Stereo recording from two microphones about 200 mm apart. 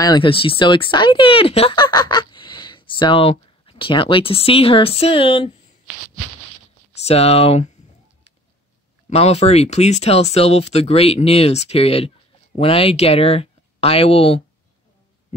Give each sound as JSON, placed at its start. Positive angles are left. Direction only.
{"t": 0.0, "sound": "speech", "side_deg": 25}
{"t": 7.1, "sound": "speech", "side_deg": 30}
{"t": 9.1, "sound": "speech", "side_deg": 30}